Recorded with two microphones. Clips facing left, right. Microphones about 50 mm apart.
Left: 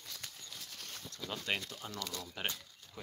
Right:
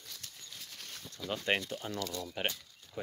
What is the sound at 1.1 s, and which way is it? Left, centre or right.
Speech, right.